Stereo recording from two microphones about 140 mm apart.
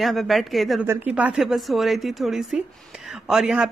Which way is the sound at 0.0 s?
Centre (ahead or behind).